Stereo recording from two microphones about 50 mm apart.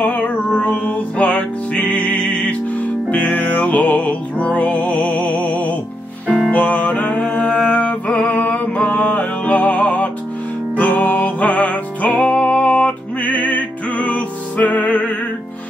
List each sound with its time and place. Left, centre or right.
0.0 s music: left